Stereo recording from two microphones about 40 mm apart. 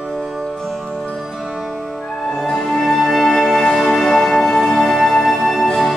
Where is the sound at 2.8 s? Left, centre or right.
Centre.